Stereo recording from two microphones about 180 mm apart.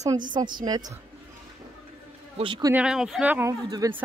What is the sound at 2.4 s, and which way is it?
Speech, 25° right (ahead or behind).